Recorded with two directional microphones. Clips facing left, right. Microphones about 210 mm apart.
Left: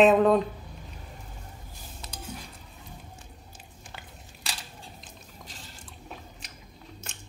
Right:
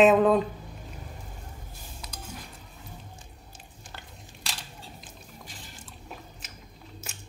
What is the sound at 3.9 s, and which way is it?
Biting, centre (ahead or behind).